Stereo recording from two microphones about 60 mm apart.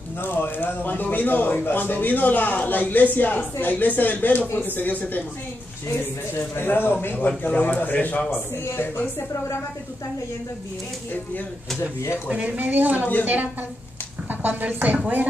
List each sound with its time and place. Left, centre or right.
0.2 s speech: left
8.6 s speech: left
12.3 s speech: right